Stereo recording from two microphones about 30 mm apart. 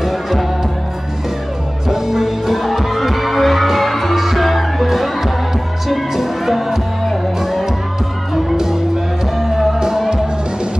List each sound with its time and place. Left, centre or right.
0.0 s music: centre
1.9 s music: centre
9.4 s music: centre